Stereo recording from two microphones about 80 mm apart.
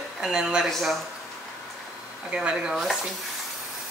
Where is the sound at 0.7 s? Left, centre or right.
Centre.